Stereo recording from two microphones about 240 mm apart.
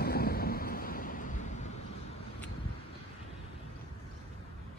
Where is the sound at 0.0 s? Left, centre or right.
Left.